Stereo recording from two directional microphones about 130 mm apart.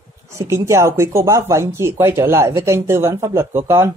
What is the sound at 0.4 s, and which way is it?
Speech, 20° right (ahead or behind).